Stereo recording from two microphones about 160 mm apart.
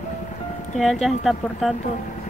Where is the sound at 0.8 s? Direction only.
Centre (ahead or behind).